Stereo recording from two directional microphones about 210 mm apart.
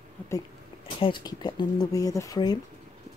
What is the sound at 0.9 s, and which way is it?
Speech, 20° left (ahead or behind).